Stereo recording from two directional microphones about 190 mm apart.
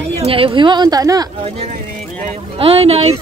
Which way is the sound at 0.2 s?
30° right (ahead or behind).